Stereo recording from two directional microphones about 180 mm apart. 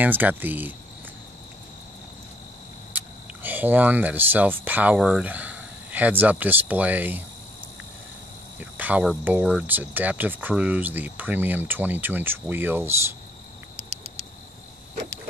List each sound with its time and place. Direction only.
0.0 s speech: 10° right (ahead or behind)
2.9 s a sound: 10° right (ahead or behind)
3.4 s speech: 10° right (ahead or behind)
8.5 s cricket: 10° right (ahead or behind)
9.5 s speech: 5° right (ahead or behind)
13.7 s cricket: 35° right (ahead or behind)